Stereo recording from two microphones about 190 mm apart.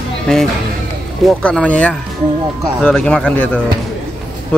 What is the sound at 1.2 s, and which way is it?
Speech, 5° left (ahead or behind).